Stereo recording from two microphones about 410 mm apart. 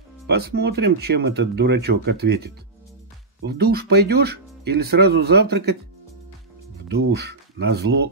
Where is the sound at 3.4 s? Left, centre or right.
Right.